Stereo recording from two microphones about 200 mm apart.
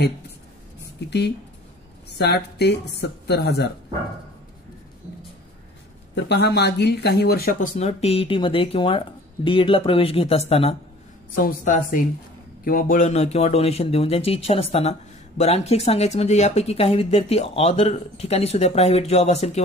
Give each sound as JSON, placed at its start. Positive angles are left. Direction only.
{"t": 2.3, "sound": "speech", "side_deg": 55}
{"t": 6.1, "sound": "speech", "side_deg": 55}
{"t": 11.3, "sound": "a woman's voice", "side_deg": 45}